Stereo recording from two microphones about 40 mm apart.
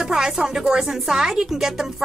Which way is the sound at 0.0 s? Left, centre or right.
Centre.